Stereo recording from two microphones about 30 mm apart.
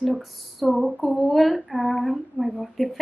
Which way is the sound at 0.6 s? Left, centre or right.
Centre.